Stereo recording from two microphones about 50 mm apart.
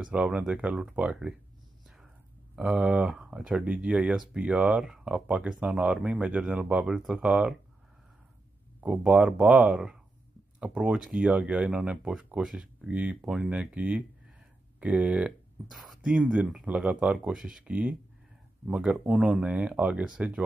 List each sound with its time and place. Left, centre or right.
0.1 s speech: right
2.5 s speech: centre
4.1 s speech: centre
4.4 s speech: right
7.0 s speech: centre
9.0 s speech: centre
11.0 s speech: centre
11.2 s speech: right
15.7 s speech: centre
16.0 s speech: centre
17.3 s speech: centre
17.6 s speech: right